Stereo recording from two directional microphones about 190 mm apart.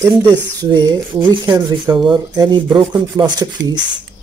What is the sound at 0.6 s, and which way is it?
Speech, 20° right (ahead or behind).